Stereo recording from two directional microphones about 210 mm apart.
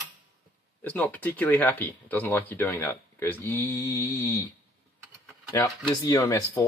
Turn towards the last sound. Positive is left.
turn(degrees=15)  # may be behind; listen again after turning